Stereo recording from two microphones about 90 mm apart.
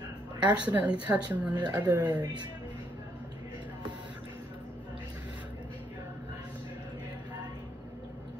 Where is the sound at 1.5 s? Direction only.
50° right (ahead or behind).